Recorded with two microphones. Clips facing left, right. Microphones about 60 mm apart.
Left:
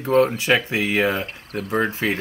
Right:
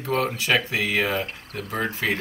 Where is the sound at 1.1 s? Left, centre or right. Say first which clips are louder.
Left 1 dB; centre.